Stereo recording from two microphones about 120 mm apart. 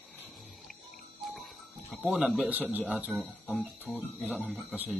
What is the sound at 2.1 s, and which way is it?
Speech, 5° right (ahead or behind).